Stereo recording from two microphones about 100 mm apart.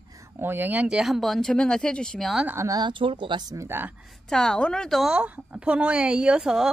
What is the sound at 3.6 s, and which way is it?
Speech, 25° right (ahead or behind).